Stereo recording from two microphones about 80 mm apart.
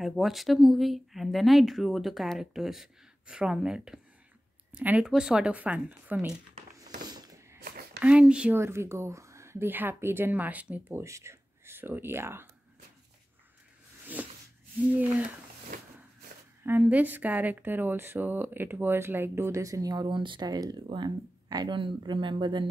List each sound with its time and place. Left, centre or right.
0.0 s speech: centre
5.0 s speech: centre
7.0 s a sound: right
8.0 s speech: centre
8.5 s a woman's voice: right
11.0 s speech: right
14.2 s a sound: centre
14.9 s a woman's voice: centre
16.6 s a woman's voice: right
20.1 s speech: right
20.4 s speech: right
21.7 s speech: right